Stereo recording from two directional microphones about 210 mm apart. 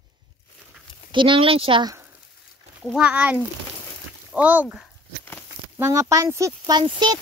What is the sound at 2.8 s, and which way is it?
Speech, 5° right (ahead or behind).